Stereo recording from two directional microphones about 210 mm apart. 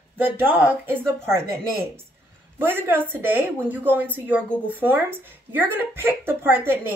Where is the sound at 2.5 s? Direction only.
10° right (ahead or behind).